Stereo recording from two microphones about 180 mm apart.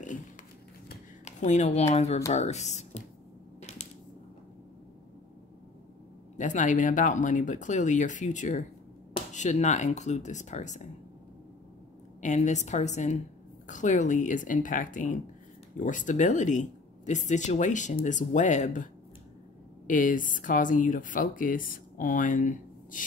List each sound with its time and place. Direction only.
1.2 s speech: 40° left (ahead or behind)
6.3 s speech: 45° left (ahead or behind)
12.2 s speech: 40° left (ahead or behind)
19.9 s speech: 45° left (ahead or behind)